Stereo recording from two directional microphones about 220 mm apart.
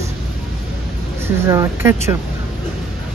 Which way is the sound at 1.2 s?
10° right (ahead or behind).